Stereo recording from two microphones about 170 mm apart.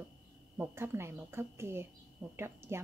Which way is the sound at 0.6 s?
15° right (ahead or behind).